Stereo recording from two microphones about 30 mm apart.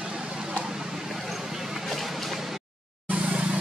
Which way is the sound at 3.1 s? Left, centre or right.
Right.